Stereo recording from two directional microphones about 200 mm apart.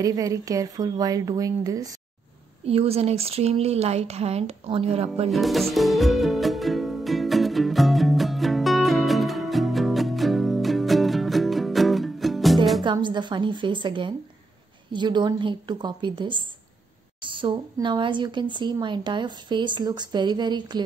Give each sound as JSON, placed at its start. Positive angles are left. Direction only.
{"t": 0.0, "sound": "a woman's voice", "side_deg": -15}
{"t": 2.6, "sound": "speech", "side_deg": -30}
{"t": 5.3, "sound": "music", "side_deg": 0}
{"t": 12.8, "sound": "a woman's voice", "side_deg": -25}